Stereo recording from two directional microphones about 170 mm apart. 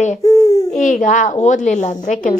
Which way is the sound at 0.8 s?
50° left (ahead or behind).